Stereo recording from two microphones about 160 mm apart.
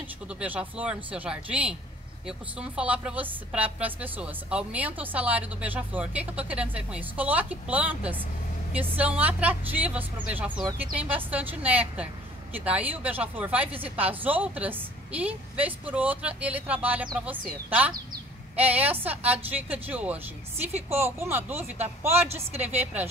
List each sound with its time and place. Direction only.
0.4 s a woman's voice: 10° right (ahead or behind)